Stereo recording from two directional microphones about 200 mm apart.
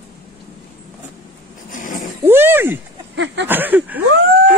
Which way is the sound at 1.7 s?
40° left (ahead or behind).